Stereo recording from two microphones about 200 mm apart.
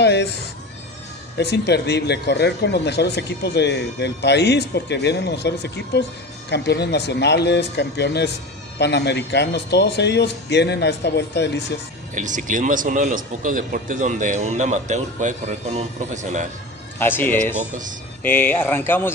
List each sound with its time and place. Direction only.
0.0 s a sound: 60° left (ahead or behind)
1.4 s speech: 55° left (ahead or behind)
12.2 s a man's voice: 40° right (ahead or behind)
17.0 s speech: 10° left (ahead or behind)